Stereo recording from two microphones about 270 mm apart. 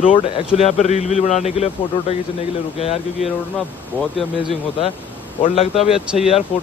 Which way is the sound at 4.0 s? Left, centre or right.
Centre.